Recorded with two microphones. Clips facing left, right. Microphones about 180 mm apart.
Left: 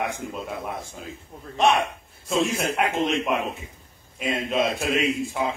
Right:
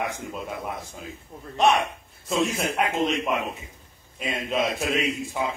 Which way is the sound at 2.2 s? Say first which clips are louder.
Left 1 dB; centre (ahead or behind).